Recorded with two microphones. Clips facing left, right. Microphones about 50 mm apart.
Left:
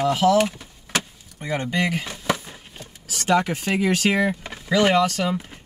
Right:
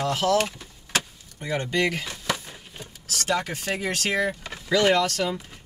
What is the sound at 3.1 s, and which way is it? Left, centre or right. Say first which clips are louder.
Speech: left 6 dB; centre.